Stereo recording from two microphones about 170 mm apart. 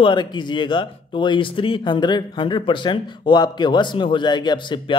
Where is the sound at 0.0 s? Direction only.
30° left (ahead or behind).